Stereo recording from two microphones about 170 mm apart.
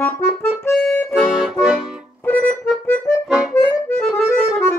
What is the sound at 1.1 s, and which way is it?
Accordion, centre (ahead or behind).